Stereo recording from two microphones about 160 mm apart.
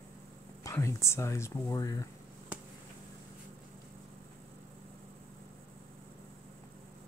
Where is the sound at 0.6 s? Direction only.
20° left (ahead or behind).